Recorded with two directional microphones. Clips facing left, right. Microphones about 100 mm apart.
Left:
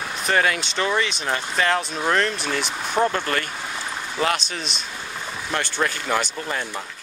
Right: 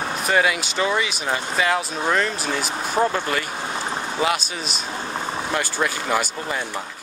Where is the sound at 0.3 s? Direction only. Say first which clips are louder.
Even; 10° right (ahead or behind).